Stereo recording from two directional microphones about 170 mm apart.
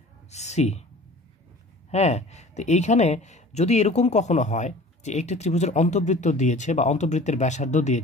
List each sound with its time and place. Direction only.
0.3 s speech: 40° left (ahead or behind)
1.9 s speech: 40° left (ahead or behind)